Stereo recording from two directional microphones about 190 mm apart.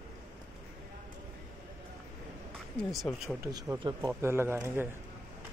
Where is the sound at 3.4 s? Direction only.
15° right (ahead or behind).